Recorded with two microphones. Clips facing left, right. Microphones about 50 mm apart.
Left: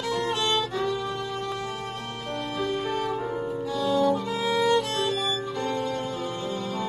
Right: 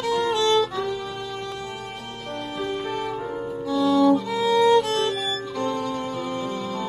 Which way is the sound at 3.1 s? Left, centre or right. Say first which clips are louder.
Even; centre.